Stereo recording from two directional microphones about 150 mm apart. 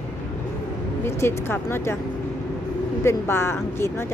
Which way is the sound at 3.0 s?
15° left (ahead or behind).